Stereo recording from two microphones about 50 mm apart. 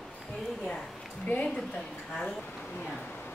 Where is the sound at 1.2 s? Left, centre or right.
Left.